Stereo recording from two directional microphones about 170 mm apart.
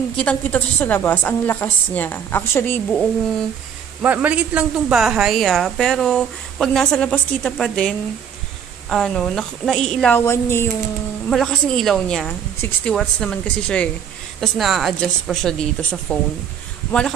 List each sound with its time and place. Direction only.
0.2 s a woman's voice: 10° left (ahead or behind)
4.0 s a woman's voice: 10° right (ahead or behind); by 10.7 s 15° left (ahead or behind)
11.2 s a woman's voice: 5° left (ahead or behind)